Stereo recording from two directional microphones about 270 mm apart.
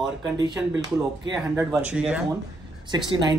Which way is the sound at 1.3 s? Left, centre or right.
Centre.